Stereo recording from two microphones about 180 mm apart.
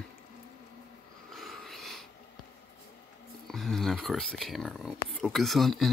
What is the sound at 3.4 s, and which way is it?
Speech, centre (ahead or behind).